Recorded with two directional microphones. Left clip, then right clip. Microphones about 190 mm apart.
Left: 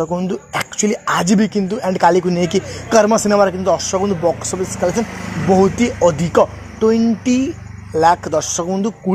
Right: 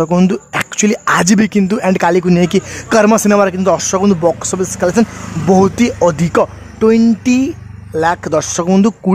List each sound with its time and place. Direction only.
0.3 s speech: 25° right (ahead or behind)
3.1 s speech: 40° right (ahead or behind)
7.4 s speech: 15° right (ahead or behind)
8.6 s speech: 40° right (ahead or behind)